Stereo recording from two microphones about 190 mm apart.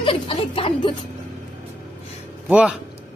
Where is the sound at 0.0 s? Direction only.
25° left (ahead or behind).